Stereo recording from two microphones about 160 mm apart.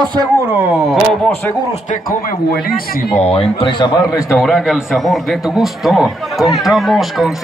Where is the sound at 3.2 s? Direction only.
40° left (ahead or behind).